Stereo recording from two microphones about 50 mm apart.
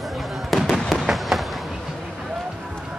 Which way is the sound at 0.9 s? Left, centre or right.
Centre.